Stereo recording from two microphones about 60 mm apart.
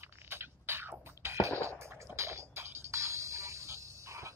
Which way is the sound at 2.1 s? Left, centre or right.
Right.